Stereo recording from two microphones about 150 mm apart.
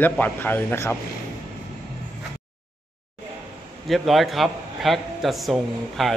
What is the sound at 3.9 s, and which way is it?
A man's voice, centre (ahead or behind).